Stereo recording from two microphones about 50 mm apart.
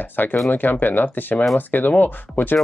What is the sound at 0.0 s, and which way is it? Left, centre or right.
Speech, left.